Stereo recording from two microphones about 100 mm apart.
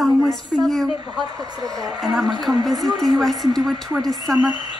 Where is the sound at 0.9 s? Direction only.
45° right (ahead or behind).